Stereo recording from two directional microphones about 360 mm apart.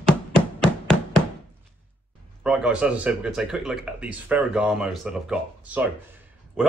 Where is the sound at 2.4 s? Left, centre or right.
Centre.